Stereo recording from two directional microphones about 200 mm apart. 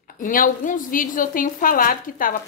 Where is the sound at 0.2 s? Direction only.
45° left (ahead or behind).